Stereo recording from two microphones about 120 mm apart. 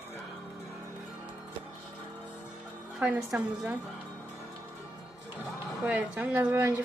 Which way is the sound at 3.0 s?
10° right (ahead or behind).